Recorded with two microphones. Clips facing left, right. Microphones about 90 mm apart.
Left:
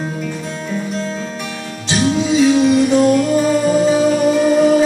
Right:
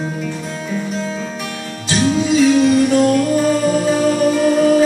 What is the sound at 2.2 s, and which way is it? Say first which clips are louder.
Music: even; 15° left (ahead or behind).